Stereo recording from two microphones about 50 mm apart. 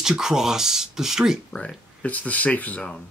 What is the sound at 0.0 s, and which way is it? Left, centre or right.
Speech, centre.